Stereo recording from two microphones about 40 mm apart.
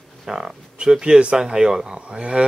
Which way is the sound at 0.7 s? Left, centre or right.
Right.